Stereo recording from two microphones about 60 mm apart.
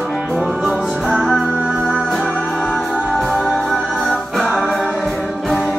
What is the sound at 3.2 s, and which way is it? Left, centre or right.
Music, centre.